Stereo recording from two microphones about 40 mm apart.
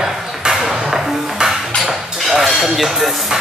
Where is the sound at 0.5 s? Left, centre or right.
Centre.